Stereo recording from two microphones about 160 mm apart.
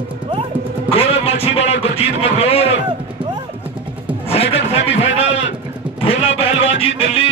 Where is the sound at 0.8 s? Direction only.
35° left (ahead or behind).